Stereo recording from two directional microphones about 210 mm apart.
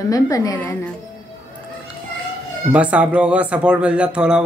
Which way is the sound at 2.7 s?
5° right (ahead or behind).